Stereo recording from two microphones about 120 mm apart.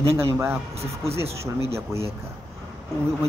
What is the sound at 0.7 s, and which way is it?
Speech, 55° right (ahead or behind).